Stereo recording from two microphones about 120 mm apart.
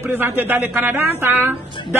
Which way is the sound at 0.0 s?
20° right (ahead or behind).